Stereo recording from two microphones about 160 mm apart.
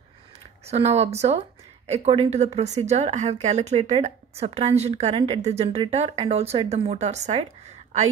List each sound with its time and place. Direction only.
0.7 s speech: 40° right (ahead or behind)